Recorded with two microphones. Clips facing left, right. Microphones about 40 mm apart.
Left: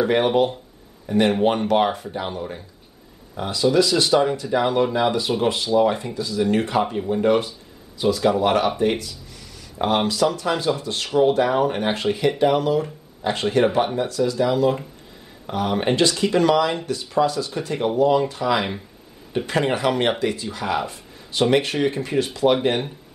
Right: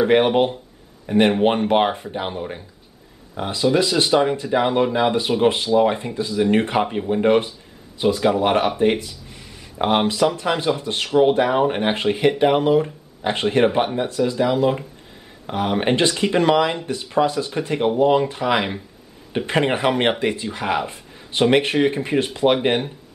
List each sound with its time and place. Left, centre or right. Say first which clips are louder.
0.0 s speech: right 2 dB; right
14.4 s speech: right 1 dB; centre